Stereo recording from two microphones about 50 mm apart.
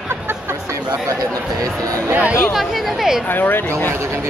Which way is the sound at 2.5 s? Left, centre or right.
Centre.